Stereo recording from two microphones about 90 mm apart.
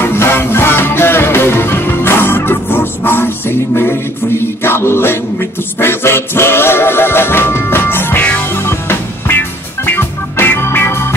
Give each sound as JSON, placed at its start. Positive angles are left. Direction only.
{"t": 0.0, "sound": "music", "side_deg": 25}